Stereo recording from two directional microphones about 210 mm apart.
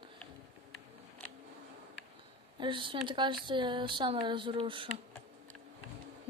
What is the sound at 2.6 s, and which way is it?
Speech, 25° right (ahead or behind).